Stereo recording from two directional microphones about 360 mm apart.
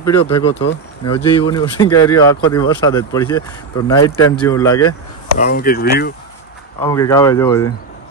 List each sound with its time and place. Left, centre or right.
0.0 s speech: centre
5.4 s speech: left
6.8 s speech: centre